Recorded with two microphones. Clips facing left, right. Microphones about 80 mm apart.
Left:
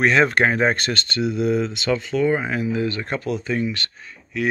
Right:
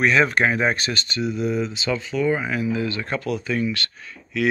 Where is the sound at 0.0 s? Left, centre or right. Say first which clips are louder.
Left 1 dB; left.